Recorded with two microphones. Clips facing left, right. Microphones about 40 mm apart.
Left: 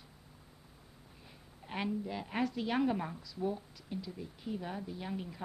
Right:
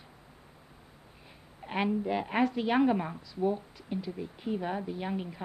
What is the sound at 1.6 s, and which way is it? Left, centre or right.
A woman's voice, right.